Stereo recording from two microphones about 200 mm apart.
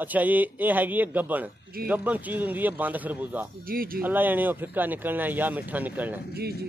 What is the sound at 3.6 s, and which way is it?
Speech, 45° right (ahead or behind).